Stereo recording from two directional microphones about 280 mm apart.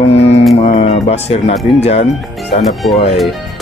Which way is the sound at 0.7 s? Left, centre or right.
Left.